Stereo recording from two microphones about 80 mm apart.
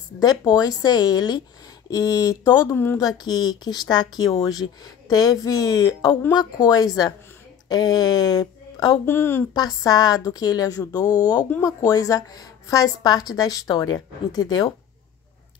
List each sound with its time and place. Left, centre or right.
0.2 s a woman's voice: left
2.7 s a woman's voice: left
3.0 s a woman's voice: left
9.0 s a woman's voice: left
9.5 s a woman's voice: left